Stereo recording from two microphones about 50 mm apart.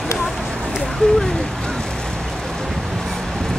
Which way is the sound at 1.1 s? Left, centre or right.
Centre.